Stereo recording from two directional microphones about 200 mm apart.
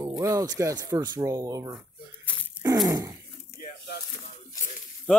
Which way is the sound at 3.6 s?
55° left (ahead or behind).